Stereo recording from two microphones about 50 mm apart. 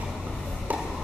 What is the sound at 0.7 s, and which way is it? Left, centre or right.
Chop, right.